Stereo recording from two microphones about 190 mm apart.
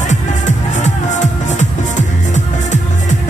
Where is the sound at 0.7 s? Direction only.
40° left (ahead or behind).